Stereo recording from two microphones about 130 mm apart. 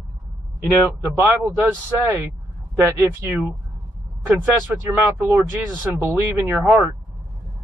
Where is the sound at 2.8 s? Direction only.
20° right (ahead or behind).